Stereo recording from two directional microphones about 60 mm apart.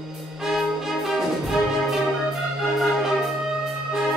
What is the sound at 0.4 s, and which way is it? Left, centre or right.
Music, centre.